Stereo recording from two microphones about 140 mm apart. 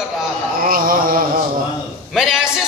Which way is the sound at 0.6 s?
90° right.